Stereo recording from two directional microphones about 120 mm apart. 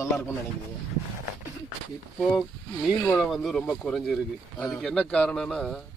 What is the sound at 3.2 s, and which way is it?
Speech, centre (ahead or behind).